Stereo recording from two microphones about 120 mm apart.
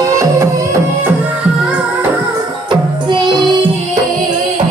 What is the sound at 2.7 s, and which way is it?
Music, 40° right (ahead or behind).